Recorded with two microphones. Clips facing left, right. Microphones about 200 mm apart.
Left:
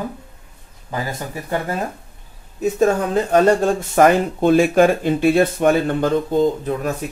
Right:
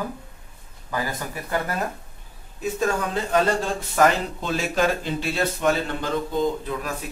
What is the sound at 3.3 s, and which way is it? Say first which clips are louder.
Speech: left 7 dB; 45° left (ahead or behind).